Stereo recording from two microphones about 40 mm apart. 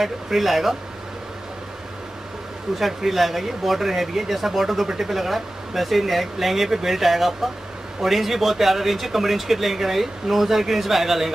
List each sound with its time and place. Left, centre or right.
0.0 s a man's voice: centre
2.8 s a man's voice: centre